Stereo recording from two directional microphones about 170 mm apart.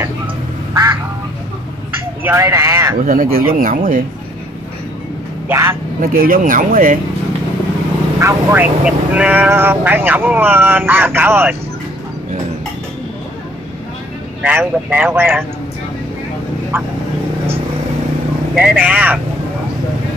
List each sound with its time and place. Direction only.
2.2 s speech: 15° right (ahead or behind)
3.0 s speech: 55° right (ahead or behind)
5.5 s speech: 15° right (ahead or behind)
5.9 s speech: 55° right (ahead or behind)
8.2 s speech: 15° right (ahead or behind)
14.4 s speech: 10° right (ahead or behind)
16.7 s speech: 10° right (ahead or behind)
18.5 s speech: 5° right (ahead or behind)